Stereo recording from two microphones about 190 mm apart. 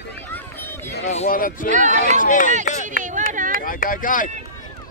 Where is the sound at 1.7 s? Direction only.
40° right (ahead or behind).